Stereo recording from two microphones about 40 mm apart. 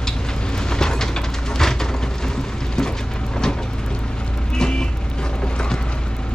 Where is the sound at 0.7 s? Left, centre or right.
Centre.